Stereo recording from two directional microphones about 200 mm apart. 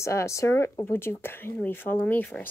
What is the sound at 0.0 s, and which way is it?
Speech, 15° left (ahead or behind).